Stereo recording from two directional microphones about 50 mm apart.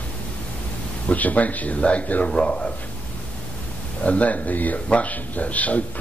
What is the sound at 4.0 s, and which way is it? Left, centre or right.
Speech, left.